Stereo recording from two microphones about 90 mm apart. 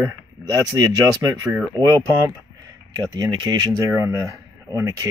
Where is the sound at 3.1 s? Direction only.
55° right (ahead or behind).